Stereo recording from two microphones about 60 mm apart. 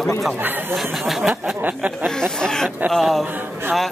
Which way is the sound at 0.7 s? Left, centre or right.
Centre.